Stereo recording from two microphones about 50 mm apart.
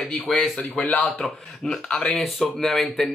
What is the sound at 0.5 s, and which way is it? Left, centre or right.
Speech, left.